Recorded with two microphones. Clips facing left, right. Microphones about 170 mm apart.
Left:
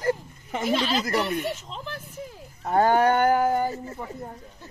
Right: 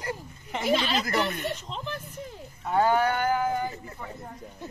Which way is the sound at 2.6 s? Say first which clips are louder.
Left 3 dB; 45° left (ahead or behind).